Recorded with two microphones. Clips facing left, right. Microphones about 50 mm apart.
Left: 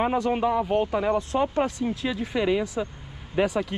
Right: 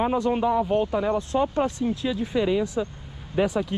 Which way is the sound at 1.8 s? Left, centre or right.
Left.